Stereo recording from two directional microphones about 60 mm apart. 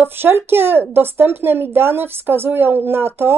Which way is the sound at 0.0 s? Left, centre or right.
Right.